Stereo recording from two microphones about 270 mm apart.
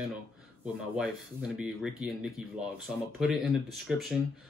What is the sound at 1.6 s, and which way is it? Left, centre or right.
Speech, centre.